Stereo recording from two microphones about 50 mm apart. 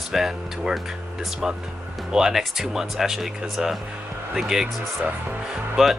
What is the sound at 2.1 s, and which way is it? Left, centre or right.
Speech, centre.